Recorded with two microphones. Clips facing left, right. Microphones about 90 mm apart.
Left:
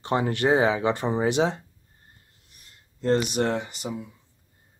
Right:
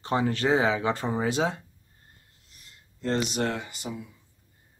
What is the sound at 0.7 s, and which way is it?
Speech, 20° left (ahead or behind).